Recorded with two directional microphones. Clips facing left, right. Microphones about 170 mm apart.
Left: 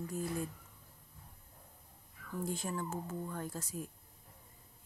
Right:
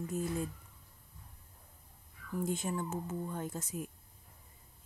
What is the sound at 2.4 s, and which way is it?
Speech, 20° right (ahead or behind).